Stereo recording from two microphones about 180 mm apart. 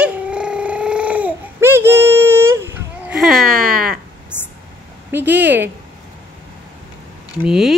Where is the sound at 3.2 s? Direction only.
Centre (ahead or behind).